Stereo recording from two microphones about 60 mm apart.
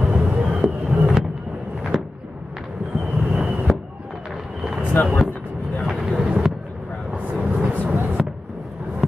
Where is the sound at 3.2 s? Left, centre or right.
Centre.